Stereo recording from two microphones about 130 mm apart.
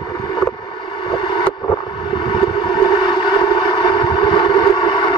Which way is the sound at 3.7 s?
35° left (ahead or behind).